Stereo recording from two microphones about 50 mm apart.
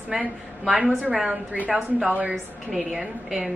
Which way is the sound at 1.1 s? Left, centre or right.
Centre.